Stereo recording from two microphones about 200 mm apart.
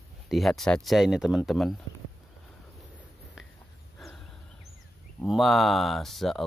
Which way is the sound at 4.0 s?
5° left (ahead or behind).